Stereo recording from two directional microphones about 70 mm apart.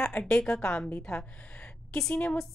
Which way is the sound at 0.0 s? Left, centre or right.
Centre.